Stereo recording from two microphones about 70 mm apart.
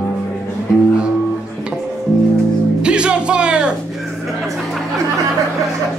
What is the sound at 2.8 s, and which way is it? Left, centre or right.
Music, centre.